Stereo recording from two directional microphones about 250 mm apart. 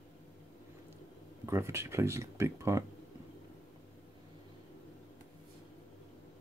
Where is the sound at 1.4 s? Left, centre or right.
Centre.